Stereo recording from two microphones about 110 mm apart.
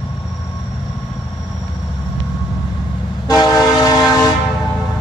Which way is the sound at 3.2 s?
35° left (ahead or behind).